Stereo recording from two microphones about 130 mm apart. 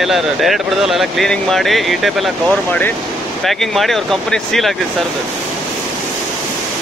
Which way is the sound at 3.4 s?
Centre (ahead or behind).